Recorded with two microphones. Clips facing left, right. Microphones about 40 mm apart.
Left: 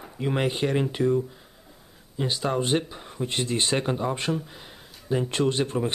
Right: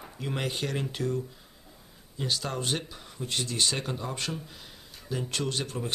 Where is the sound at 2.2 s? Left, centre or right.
Centre.